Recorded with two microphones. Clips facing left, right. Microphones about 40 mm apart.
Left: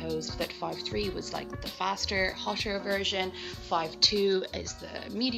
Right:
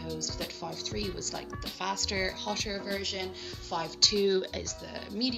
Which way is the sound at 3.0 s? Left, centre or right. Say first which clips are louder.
Left 5 dB; left.